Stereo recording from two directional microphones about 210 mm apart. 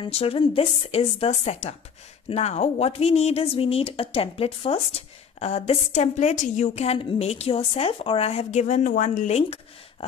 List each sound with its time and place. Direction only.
0.0 s speech: 25° left (ahead or behind)